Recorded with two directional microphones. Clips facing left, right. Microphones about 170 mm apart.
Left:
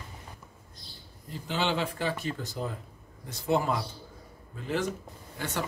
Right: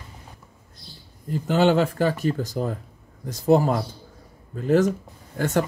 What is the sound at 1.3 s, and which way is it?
Speech, 45° right (ahead or behind).